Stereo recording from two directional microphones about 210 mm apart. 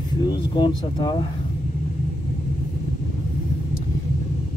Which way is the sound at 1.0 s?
20° left (ahead or behind).